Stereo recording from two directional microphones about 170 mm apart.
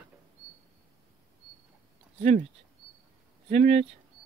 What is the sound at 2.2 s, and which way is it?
Speech, 50° right (ahead or behind).